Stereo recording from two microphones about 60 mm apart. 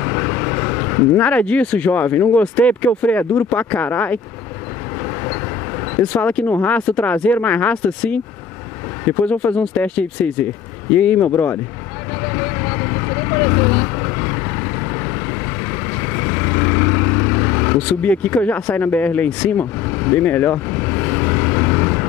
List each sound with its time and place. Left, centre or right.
0.0 s vehicle: left
1.2 s speech: left
6.1 s speech: left
12.3 s vehicle: left
16.0 s vehicle: left
17.7 s speech: left
19.6 s vehicle: left